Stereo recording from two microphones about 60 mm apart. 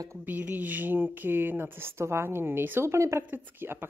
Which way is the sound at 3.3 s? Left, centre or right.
Right.